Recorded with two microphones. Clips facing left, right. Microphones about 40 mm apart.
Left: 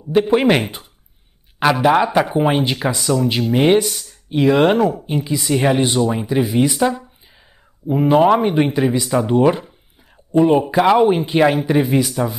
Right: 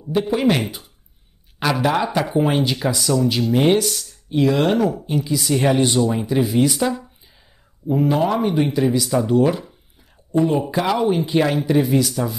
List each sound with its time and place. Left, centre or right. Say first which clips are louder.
0.1 s speech: left 4 dB; left
0.6 s speech: left 3 dB; left
3.8 s speech: even; centre
4.4 s speech: left 3 dB; left